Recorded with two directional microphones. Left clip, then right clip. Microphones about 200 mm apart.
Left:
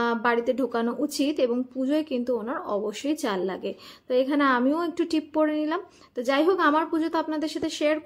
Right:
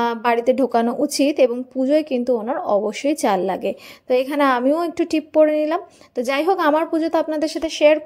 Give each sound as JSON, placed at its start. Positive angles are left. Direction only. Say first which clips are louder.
{"t": 0.0, "sound": "speech", "louder": "right 6 dB", "side_deg": -30}